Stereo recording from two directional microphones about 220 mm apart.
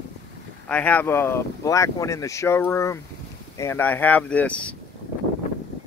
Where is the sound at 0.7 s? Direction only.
5° left (ahead or behind).